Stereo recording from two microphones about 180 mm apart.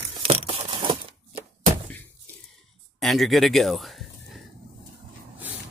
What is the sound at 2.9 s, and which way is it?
Speech, centre (ahead or behind).